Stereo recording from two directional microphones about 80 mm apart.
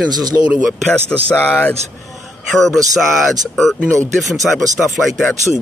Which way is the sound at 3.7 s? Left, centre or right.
Centre.